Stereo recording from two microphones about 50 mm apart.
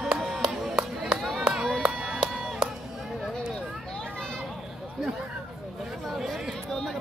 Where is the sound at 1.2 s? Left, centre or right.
Centre.